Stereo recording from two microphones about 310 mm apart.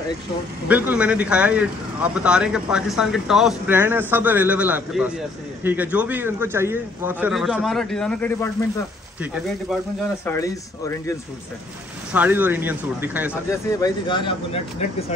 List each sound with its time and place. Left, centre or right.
0.7 s speech: centre
10.2 s speech: centre
12.1 s speech: centre
13.5 s speech: centre